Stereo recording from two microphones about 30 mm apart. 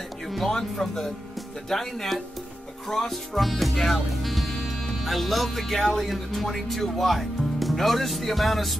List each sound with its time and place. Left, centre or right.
0.5 s speech: centre
4.2 s music: centre
5.0 s speech: centre